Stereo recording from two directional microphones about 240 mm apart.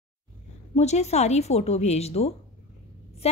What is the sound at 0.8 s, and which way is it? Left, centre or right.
A woman's voice, left.